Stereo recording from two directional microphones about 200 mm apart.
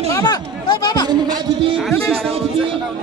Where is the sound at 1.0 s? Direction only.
25° right (ahead or behind).